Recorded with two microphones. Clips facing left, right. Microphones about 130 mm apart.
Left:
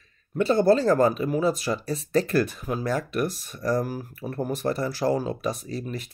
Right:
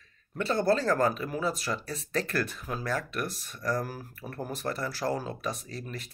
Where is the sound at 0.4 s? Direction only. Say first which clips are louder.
Left 7 dB; 15° left (ahead or behind).